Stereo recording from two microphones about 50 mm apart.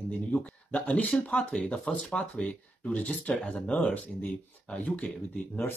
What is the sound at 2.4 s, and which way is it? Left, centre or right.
Speech, left.